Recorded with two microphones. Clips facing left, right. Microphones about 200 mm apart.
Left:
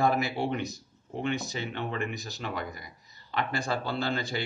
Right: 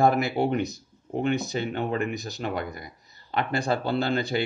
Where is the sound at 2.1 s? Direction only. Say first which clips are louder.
Right 5 dB; 55° right (ahead or behind).